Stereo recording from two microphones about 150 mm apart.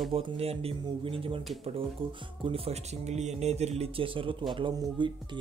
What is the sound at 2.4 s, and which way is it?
Speech, 40° right (ahead or behind).